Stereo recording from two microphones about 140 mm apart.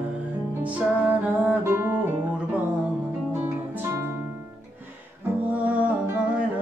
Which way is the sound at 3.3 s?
15° right (ahead or behind).